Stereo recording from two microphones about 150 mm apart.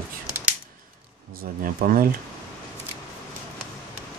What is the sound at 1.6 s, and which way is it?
Speech, 70° right (ahead or behind).